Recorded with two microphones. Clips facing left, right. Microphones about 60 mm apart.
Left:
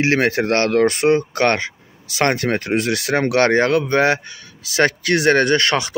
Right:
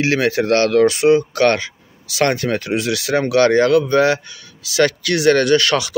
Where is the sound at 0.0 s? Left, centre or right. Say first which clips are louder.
Even; left.